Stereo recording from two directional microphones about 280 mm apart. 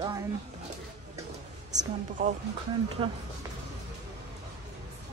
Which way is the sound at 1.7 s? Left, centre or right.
Right.